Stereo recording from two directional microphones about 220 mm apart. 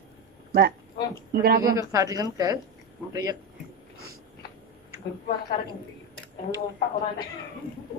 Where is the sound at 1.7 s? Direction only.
15° right (ahead or behind).